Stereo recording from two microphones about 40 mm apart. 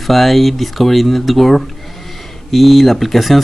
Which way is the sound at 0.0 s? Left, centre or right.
Centre.